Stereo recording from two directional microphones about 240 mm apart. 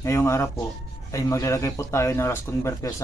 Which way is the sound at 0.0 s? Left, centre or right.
Centre.